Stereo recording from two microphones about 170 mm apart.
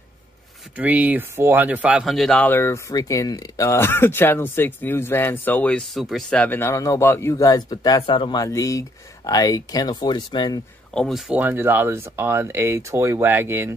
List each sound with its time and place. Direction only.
0.7 s speech: 10° right (ahead or behind); by 10.6 s 25° left (ahead or behind)
10.9 s speech: centre (ahead or behind); by 13.7 s 15° right (ahead or behind)